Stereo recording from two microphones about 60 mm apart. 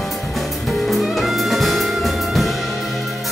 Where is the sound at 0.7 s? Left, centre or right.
Centre.